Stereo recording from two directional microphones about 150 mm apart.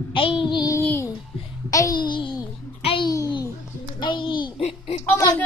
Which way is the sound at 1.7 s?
20° left (ahead or behind).